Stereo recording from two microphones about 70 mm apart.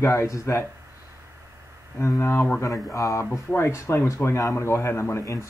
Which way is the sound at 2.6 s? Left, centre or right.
Left.